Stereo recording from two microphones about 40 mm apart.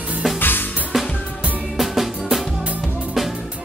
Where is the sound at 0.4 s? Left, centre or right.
Left.